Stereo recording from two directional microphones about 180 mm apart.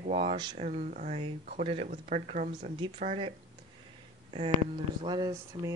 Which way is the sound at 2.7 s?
30° right (ahead or behind).